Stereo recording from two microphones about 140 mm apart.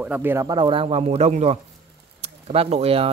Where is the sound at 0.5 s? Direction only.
35° right (ahead or behind).